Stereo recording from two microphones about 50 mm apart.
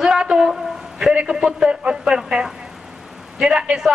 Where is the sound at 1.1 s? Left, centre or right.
Centre.